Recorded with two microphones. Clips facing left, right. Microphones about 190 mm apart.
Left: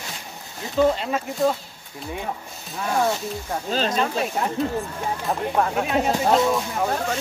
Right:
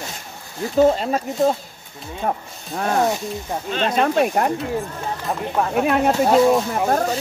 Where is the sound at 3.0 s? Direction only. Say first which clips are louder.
Right 2 dB; 15° right (ahead or behind).